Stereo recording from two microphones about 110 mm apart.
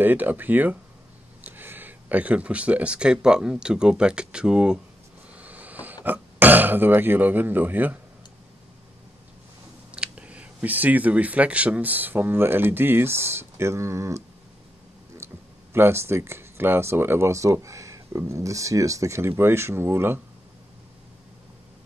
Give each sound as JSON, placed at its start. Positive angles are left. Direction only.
{"t": 0.0, "sound": "speech", "side_deg": -15}
{"t": 5.3, "sound": "a sound", "side_deg": -15}
{"t": 6.0, "sound": "speech", "side_deg": -15}
{"t": 9.8, "sound": "speech", "side_deg": -10}
{"t": 15.7, "sound": "speech", "side_deg": -20}